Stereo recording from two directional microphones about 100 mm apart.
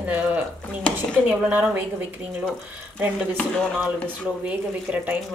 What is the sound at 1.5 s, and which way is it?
Speech, 15° right (ahead or behind).